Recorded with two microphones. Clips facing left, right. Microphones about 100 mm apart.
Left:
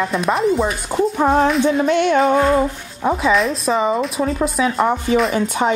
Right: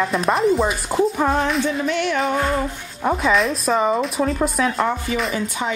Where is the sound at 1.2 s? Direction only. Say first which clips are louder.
Left 5 dB; 20° left (ahead or behind).